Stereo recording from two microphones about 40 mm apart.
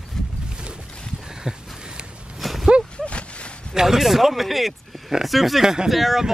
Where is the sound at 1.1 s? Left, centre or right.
Centre.